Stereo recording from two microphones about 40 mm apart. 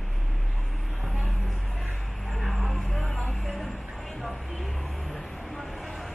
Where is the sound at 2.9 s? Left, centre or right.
Centre.